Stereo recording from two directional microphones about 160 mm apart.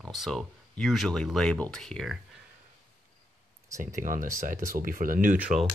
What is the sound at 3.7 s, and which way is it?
Speech, 55° right (ahead or behind).